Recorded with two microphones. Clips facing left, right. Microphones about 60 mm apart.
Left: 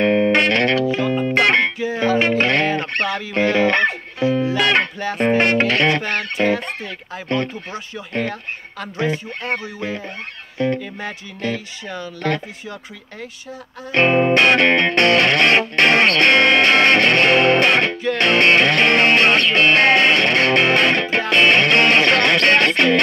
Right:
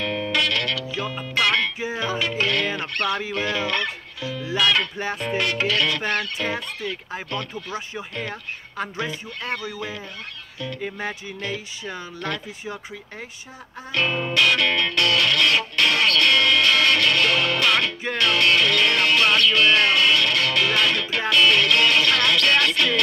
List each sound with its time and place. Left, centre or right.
0.0 s music: left
3.3 s speech: left
5.1 s music: left
10.8 s music: centre
13.9 s music: left